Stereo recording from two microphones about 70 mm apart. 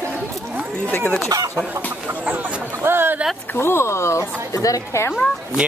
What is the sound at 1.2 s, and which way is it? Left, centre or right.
Speech, right.